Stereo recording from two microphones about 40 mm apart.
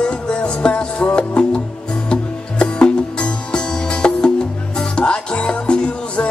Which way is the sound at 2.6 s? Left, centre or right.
Left.